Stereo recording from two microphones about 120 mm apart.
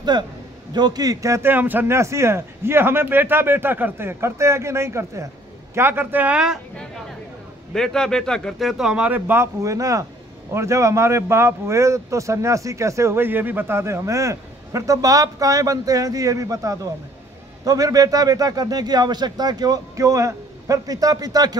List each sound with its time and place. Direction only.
0.1 s a man's voice: 35° right (ahead or behind); by 6.6 s 5° right (ahead or behind)
7.7 s a man's voice: 5° left (ahead or behind); by 21.5 s 35° right (ahead or behind)